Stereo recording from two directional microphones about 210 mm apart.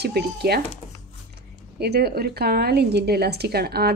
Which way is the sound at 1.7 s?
50° right (ahead or behind).